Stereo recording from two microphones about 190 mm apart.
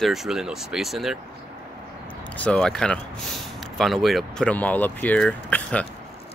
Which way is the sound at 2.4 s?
5° left (ahead or behind).